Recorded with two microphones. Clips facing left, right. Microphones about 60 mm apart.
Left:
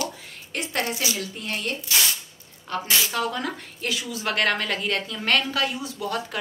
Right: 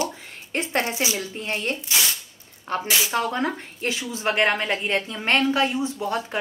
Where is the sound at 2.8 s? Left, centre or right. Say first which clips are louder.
Left 1 dB; centre.